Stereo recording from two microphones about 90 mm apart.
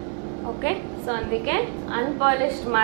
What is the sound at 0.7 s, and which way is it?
A woman's voice, 15° right (ahead or behind).